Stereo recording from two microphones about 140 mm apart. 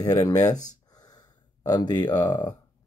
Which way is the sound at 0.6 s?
30° left (ahead or behind).